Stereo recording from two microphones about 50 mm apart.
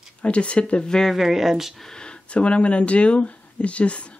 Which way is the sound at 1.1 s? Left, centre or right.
Centre.